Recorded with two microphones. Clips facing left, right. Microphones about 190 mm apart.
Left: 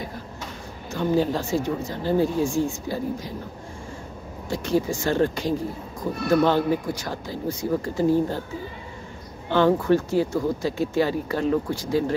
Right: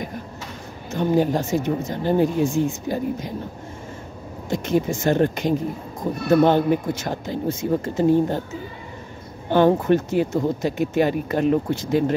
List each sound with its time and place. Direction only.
0.9 s speech: 15° right (ahead or behind)
4.5 s speech: 20° right (ahead or behind)
9.8 s speech: 20° right (ahead or behind)